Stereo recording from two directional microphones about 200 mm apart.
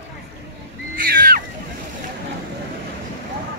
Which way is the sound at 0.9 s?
45° right (ahead or behind).